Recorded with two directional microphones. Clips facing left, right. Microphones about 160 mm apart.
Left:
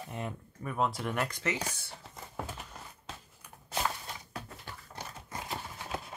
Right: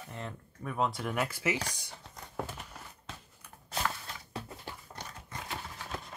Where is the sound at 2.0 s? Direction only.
Centre (ahead or behind).